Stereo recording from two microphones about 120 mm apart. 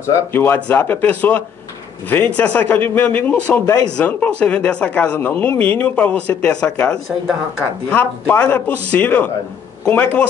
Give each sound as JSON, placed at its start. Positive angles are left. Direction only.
{"t": 0.0, "sound": "speech", "side_deg": 20}